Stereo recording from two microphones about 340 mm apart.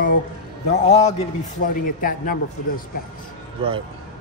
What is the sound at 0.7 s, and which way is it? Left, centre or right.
Speech, centre.